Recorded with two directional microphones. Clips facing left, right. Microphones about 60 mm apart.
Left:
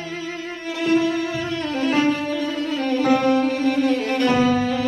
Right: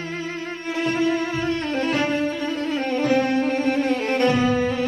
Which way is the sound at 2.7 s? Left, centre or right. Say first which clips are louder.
Left 2 dB; right.